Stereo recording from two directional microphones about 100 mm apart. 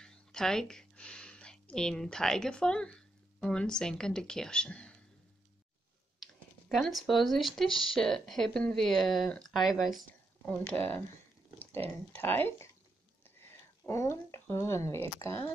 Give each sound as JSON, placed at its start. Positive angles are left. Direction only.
{"t": 0.0, "sound": "speech", "side_deg": 5}
{"t": 6.2, "sound": "speech", "side_deg": 0}
{"t": 10.7, "sound": "speech", "side_deg": 15}